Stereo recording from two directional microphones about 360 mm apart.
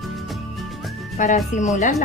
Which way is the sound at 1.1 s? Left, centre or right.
Centre.